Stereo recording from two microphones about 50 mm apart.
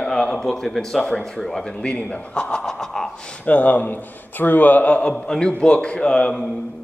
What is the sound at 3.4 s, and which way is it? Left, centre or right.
Speech, left.